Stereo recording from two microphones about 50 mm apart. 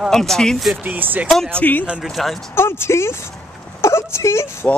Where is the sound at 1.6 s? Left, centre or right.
Left.